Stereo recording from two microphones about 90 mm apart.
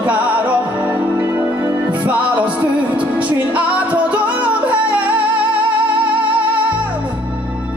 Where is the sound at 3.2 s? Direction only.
15° right (ahead or behind).